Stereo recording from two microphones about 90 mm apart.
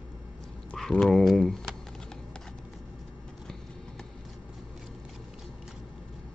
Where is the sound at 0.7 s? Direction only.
5° left (ahead or behind).